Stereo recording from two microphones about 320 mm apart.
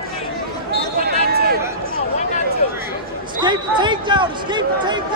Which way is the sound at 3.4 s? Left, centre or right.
Centre.